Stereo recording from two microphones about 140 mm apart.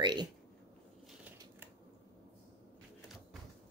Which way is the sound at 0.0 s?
30° right (ahead or behind).